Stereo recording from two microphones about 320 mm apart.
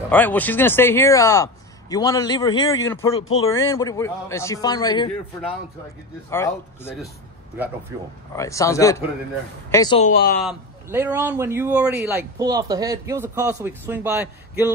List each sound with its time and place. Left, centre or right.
0.1 s speech: centre
6.3 s speech: centre
8.4 s speech: centre; by 10.4 s left
10.4 s a man's voice: centre